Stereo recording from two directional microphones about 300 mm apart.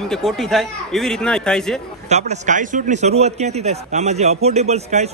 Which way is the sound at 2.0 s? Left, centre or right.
Right.